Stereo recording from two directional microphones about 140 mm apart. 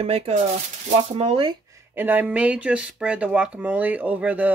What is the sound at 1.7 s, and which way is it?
Speech, 15° right (ahead or behind).